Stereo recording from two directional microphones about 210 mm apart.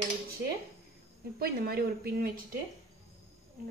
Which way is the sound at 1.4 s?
45° right (ahead or behind).